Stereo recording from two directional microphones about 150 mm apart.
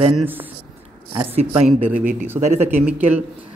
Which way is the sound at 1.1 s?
45° right (ahead or behind).